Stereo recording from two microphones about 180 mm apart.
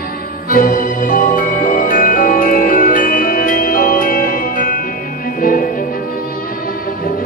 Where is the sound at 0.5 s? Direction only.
50° left (ahead or behind).